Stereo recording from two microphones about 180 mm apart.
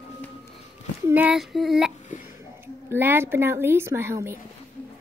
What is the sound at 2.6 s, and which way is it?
A woman's voice, 10° right (ahead or behind).